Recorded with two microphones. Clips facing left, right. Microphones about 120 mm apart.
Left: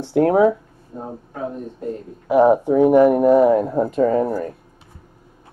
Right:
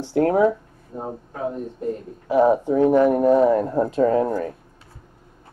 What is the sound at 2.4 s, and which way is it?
Speech, 15° left (ahead or behind).